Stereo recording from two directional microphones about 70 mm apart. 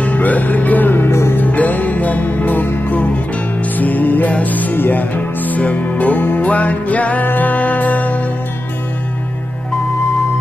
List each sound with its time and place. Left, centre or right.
0.0 s music: left
1.4 s music: left